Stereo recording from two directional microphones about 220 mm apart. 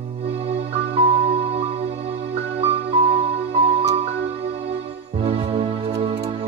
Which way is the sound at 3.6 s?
25° right (ahead or behind).